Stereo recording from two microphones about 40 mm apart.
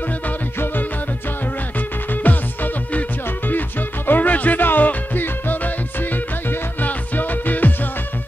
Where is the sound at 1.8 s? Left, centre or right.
Left.